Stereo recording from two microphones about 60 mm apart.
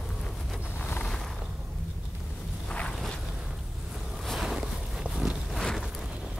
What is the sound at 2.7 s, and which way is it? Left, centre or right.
Boat, centre.